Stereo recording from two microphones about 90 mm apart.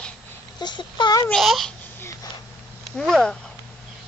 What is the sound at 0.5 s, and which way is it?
Speech, 55° left (ahead or behind).